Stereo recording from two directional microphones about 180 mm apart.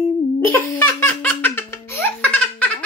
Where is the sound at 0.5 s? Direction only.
15° left (ahead or behind).